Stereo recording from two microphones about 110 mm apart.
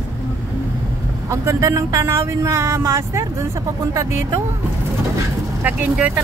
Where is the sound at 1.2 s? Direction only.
25° right (ahead or behind).